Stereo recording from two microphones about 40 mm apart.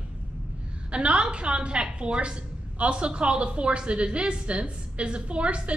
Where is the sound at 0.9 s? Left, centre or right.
Right.